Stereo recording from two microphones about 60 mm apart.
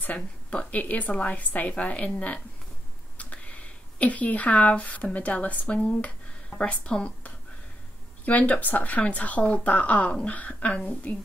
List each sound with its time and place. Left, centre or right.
0.0 s speech: left
3.2 s a woman's voice: left